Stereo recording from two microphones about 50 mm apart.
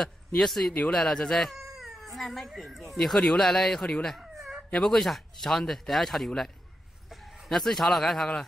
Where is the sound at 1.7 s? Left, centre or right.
Centre.